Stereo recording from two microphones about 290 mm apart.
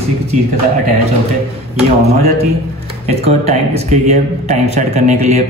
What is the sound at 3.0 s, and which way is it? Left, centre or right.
Speech, right.